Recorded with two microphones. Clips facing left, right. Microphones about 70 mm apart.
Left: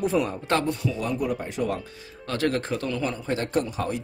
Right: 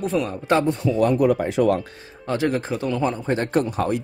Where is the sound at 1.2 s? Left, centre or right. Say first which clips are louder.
Right 9 dB; right.